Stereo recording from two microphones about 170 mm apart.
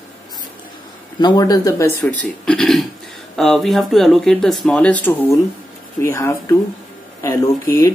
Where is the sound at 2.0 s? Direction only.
5° left (ahead or behind).